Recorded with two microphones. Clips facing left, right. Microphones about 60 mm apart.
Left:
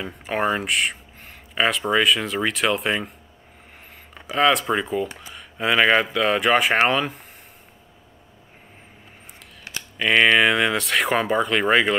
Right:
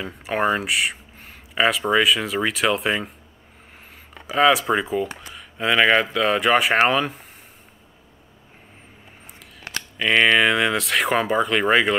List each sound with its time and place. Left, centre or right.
0.0 s speech: centre
9.9 s speech: centre